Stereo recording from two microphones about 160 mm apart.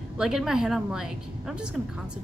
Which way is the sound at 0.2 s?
5° right (ahead or behind).